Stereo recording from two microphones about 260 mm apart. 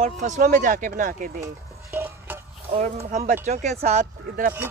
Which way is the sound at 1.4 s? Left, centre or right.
Centre.